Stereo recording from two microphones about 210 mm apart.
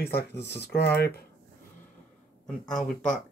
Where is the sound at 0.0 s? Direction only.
50° left (ahead or behind).